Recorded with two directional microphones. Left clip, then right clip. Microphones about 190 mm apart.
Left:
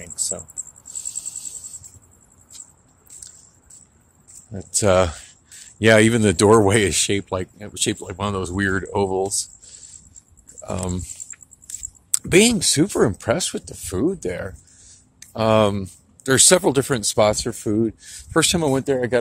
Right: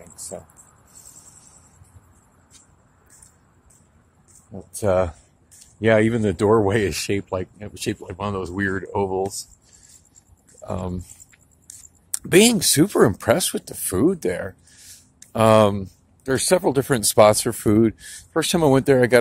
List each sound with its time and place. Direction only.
4.7 s speech: 25° left (ahead or behind)
10.5 s speech: 10° left (ahead or behind)
12.1 s speech: 5° left (ahead or behind); by 14.3 s 10° right (ahead or behind)
15.3 s speech: 5° right (ahead or behind)
15.8 s speech: 20° left (ahead or behind)
16.9 s speech: 5° right (ahead or behind)